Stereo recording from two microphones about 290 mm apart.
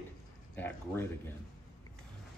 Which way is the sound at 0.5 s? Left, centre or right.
Centre.